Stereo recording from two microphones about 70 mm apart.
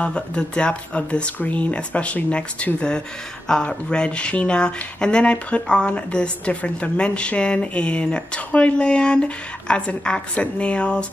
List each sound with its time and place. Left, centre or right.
0.0 s speech: centre